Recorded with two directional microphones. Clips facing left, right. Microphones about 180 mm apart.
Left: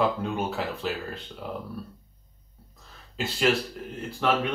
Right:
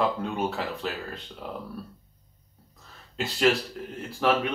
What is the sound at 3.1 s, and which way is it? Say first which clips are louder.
Speech: right 1 dB; centre (ahead or behind).